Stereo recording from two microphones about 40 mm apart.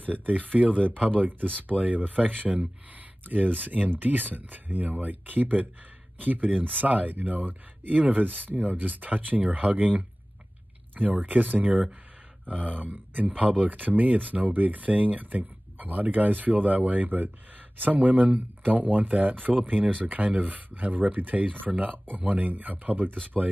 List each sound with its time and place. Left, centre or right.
0.0 s speech: right
13.4 s speech: right